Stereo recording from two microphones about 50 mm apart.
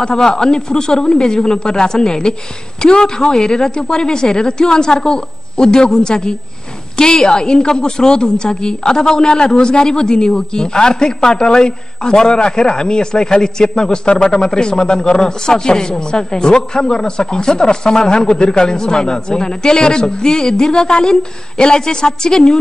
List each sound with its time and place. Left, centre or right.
0.0 s a woman's voice: centre